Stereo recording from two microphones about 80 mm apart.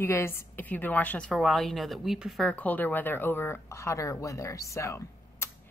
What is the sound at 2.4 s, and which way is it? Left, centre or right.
Speech, centre.